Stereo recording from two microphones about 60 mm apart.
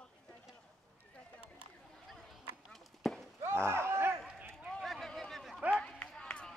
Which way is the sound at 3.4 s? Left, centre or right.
Right.